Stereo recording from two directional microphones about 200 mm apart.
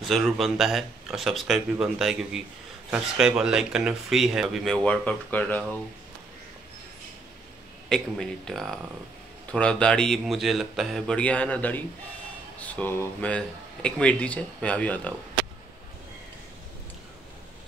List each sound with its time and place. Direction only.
0.0 s speech: centre (ahead or behind)
7.9 s speech: 5° left (ahead or behind)